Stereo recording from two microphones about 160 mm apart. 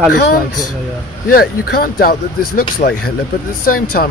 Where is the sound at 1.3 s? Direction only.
70° left (ahead or behind).